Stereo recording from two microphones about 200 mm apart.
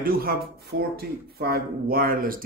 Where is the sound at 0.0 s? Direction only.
45° right (ahead or behind).